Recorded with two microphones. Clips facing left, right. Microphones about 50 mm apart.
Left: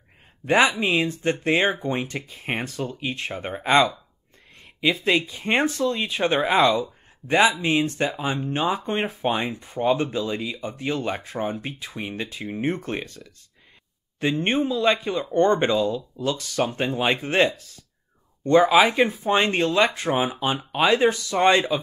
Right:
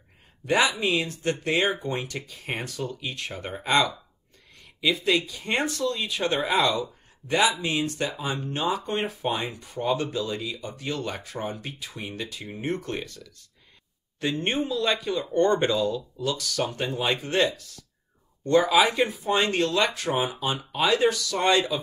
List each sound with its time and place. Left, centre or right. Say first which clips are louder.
0.5 s speech: left 4 dB; left
14.4 s speech: left 5 dB; left